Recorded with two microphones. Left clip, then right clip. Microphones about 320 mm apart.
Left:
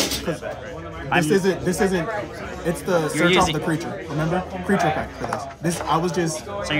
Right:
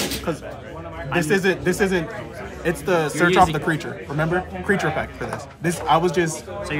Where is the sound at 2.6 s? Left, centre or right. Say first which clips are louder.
Right 1 dB; right.